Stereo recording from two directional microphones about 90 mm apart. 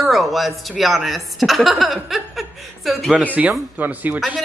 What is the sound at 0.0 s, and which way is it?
Speech, centre (ahead or behind).